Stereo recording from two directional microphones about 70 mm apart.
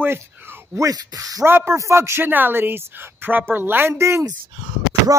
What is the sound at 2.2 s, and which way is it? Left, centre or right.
Speech, right.